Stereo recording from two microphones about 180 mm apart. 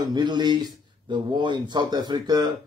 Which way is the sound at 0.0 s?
25° right (ahead or behind).